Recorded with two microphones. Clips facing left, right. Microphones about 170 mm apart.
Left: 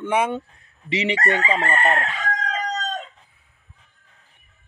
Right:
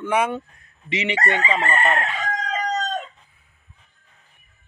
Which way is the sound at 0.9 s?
35° left (ahead or behind).